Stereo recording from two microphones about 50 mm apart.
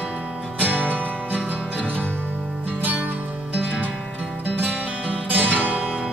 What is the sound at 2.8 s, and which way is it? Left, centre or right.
Music, right.